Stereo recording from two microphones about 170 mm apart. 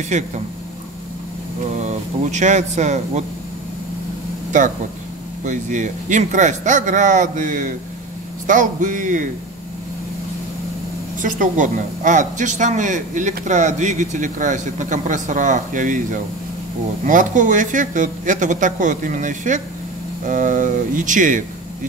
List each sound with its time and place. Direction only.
0.1 s speech: 45° right (ahead or behind)
1.9 s speech: 45° right (ahead or behind)
4.5 s speech: 50° right (ahead or behind)
11.1 s speech: 50° right (ahead or behind)